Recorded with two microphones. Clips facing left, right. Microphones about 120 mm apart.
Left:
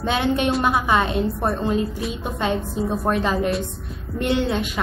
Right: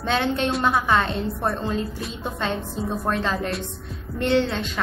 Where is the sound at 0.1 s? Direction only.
15° left (ahead or behind).